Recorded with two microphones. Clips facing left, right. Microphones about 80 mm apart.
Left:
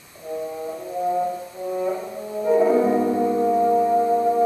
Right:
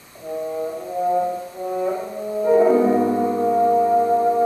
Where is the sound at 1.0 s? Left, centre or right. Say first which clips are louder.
Right 3 dB; centre.